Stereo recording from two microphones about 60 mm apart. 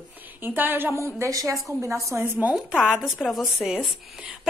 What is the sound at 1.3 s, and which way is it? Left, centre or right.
Speech, right.